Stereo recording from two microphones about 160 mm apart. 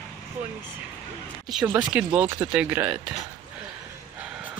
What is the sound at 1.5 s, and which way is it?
Speech, 5° right (ahead or behind).